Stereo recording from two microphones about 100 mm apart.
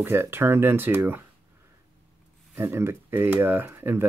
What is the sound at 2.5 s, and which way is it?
Speech, 25° right (ahead or behind).